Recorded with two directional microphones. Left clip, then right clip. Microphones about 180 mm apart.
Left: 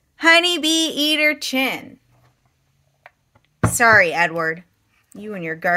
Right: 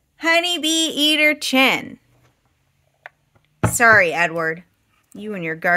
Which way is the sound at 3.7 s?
10° right (ahead or behind).